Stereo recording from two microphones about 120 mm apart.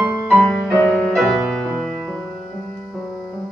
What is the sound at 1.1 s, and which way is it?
Music, 5° right (ahead or behind).